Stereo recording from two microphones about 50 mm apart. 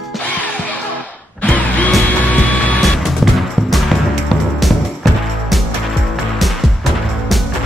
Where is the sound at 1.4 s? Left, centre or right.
Left.